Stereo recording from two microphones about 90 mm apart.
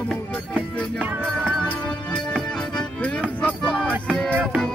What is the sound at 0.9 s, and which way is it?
Music, 20° right (ahead or behind).